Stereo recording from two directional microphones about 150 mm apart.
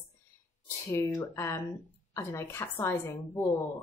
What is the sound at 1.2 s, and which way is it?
A woman's voice, 20° left (ahead or behind).